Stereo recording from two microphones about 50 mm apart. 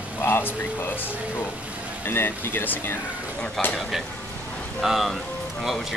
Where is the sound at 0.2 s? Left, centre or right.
Left.